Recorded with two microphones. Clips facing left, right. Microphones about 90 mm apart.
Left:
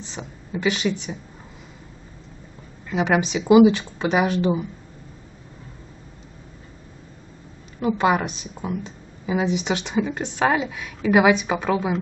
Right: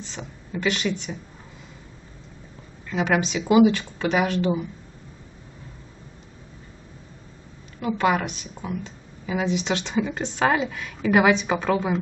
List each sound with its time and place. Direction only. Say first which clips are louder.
0.1 s speech: left 3 dB; 10° left (ahead or behind)
2.9 s speech: left 2 dB; 15° left (ahead or behind)
7.8 s speech: left 2 dB; 15° left (ahead or behind)